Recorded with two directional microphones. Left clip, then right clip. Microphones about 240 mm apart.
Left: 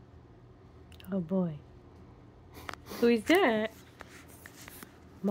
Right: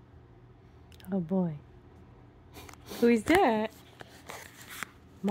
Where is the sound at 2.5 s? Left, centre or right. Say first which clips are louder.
Left 2 dB; centre.